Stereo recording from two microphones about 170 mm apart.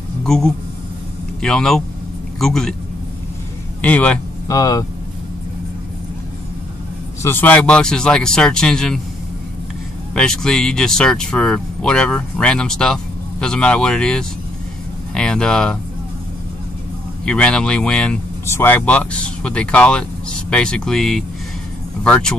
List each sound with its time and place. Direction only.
0.2 s a man's voice: 5° left (ahead or behind)
3.8 s speech: 10° left (ahead or behind)
4.5 s speech: 20° left (ahead or behind)
7.2 s speech: 10° left (ahead or behind)
10.1 s speech: 5° left (ahead or behind)
17.2 s speech: 5° left (ahead or behind)